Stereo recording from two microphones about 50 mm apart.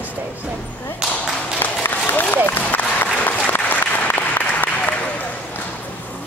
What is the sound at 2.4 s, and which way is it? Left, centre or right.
Applause, left.